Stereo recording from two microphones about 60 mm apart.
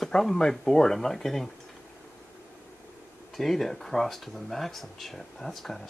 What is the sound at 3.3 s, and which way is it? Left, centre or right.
Speech, centre.